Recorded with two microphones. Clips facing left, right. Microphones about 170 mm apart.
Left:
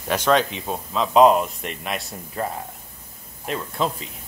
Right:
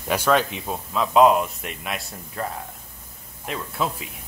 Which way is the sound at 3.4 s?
5° right (ahead or behind).